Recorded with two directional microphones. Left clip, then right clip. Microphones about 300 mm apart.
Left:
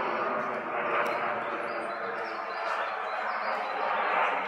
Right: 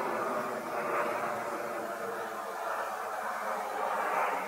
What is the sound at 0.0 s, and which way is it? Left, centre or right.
Vehicle, centre.